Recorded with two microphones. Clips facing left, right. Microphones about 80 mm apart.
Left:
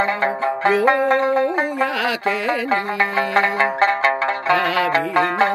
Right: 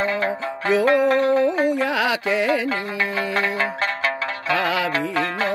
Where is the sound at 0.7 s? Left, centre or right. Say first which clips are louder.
Left 1 dB; left.